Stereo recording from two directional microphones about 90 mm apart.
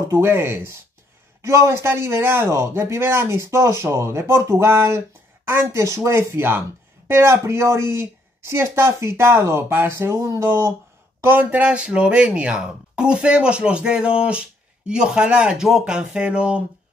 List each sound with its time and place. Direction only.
0.1 s speech: 30° right (ahead or behind); by 16.6 s 10° right (ahead or behind)